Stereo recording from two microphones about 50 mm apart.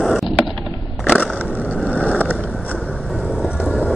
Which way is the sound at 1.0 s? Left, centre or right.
Left.